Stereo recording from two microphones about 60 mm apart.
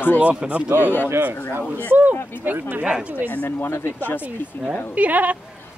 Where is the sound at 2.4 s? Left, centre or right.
Right.